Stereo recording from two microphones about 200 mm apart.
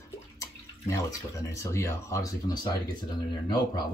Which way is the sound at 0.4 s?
15° left (ahead or behind).